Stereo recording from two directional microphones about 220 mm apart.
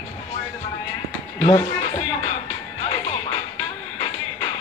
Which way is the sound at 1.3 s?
20° left (ahead or behind).